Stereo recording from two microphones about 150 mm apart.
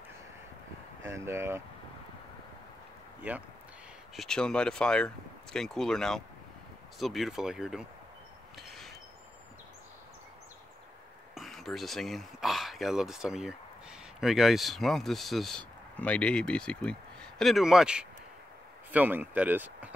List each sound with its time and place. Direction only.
1.0 s speech: 15° right (ahead or behind)
3.3 s speech: 10° right (ahead or behind)
4.2 s speech: 5° left (ahead or behind)
8.5 s a sound: centre (ahead or behind)
11.3 s speech: centre (ahead or behind)